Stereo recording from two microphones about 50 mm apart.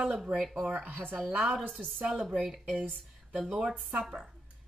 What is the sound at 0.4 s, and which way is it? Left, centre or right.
Speech, centre.